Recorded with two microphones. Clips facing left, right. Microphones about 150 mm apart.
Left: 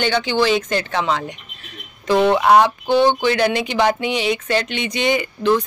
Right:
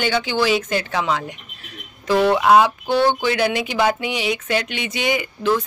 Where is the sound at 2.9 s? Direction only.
20° left (ahead or behind).